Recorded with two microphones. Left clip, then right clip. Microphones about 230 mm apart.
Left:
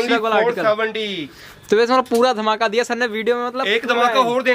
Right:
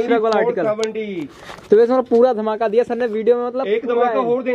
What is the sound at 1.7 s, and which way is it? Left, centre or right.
Speech, left.